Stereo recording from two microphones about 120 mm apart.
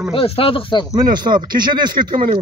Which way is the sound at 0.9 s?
35° right (ahead or behind).